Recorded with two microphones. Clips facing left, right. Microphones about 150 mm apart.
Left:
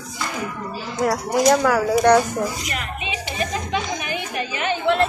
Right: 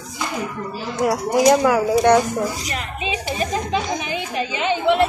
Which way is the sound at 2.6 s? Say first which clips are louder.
Right 1 dB; 35° right (ahead or behind).